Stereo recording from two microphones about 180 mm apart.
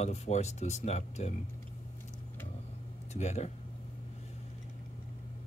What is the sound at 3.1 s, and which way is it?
Speech, 40° left (ahead or behind).